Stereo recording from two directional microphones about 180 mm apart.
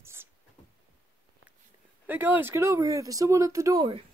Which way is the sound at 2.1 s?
10° right (ahead or behind).